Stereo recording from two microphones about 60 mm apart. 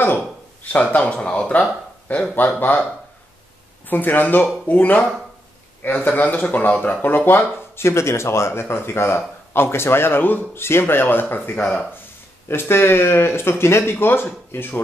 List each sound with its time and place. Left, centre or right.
0.7 s speech: left
2.3 s speech: left
3.9 s speech: left
12.4 s speech: left